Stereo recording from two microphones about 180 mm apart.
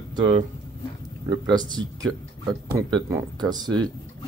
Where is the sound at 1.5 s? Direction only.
20° right (ahead or behind).